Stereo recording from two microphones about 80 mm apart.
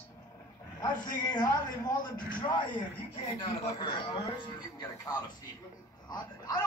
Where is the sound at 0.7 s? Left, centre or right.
Left.